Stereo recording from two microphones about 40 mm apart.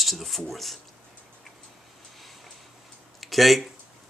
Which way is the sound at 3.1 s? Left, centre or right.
Centre.